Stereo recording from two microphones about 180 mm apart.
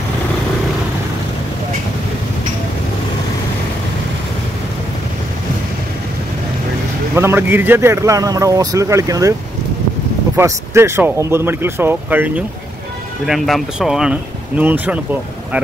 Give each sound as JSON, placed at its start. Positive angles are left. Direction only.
{"t": 7.2, "sound": "speech", "side_deg": -10}
{"t": 10.3, "sound": "speech", "side_deg": -15}